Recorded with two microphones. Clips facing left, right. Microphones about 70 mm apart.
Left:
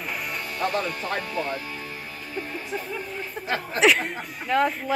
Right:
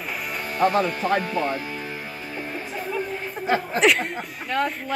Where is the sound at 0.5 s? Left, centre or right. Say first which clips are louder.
Right 7 dB; right.